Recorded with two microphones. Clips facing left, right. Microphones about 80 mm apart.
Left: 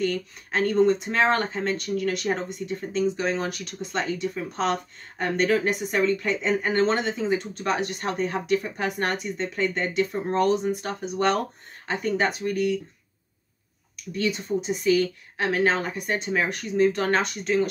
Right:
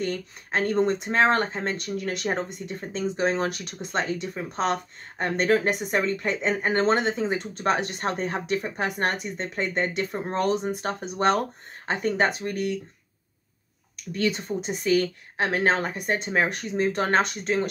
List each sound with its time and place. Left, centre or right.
0.0 s speech: right
14.1 s speech: right